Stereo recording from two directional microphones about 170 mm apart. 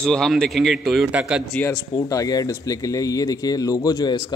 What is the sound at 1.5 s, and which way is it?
Speech, 5° left (ahead or behind).